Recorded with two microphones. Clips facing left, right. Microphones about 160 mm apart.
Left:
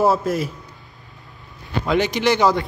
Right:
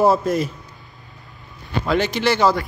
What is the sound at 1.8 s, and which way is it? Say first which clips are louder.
Speech: left 1 dB; 15° left (ahead or behind).